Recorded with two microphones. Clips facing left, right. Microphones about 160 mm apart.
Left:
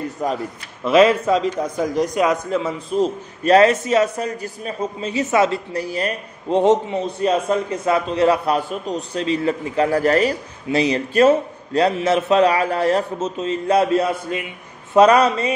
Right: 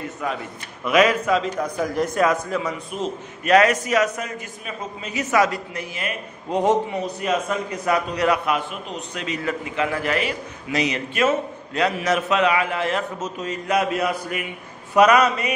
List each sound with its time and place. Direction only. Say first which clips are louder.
0.2 s a man's voice: left 5 dB; 40° left (ahead or behind)
0.8 s a man's voice: left 4 dB; 30° left (ahead or behind)
1.8 s a man's voice: left 2 dB; 15° left (ahead or behind); by 6.6 s 35° left (ahead or behind)
6.6 s a man's voice: left 3 dB; 25° left (ahead or behind)